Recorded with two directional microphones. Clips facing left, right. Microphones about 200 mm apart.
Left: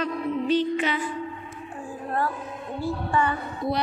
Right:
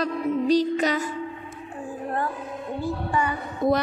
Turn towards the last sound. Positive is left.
turn(degrees=-50)  # may be behind; listen again after turning